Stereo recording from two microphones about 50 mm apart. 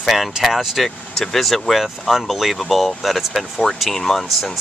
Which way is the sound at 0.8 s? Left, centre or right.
Centre.